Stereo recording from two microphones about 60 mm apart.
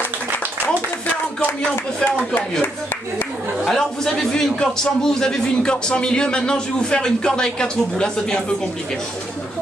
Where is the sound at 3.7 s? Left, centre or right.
Centre.